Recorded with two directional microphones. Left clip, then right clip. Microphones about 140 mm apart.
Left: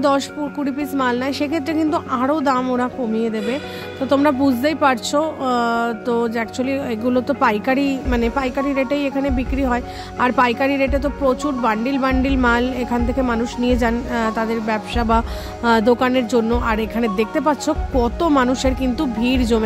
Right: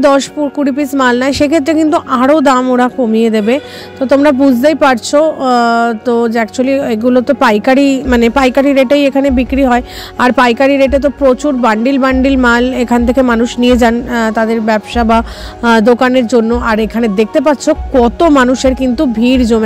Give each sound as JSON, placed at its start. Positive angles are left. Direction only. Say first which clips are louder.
{"t": 0.0, "sound": "speech", "louder": "right 9 dB", "side_deg": -35}
{"t": 4.1, "sound": "speech", "louder": "right 8 dB", "side_deg": -30}
{"t": 16.6, "sound": "speech", "louder": "right 8 dB", "side_deg": -35}